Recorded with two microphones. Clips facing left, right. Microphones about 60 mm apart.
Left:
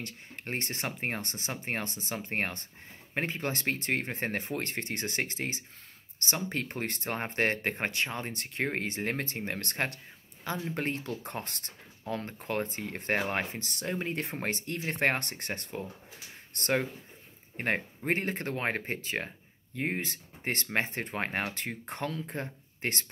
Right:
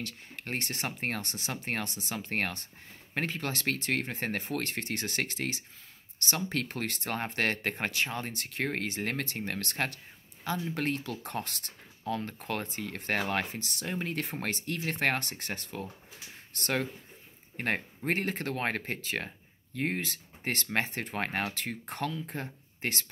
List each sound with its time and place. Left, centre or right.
0.0 s speech: left
6.7 s speech: left